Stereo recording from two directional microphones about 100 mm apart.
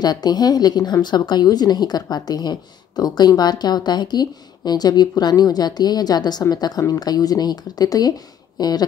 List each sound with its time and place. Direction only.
0.0 s a woman's voice: 45° left (ahead or behind)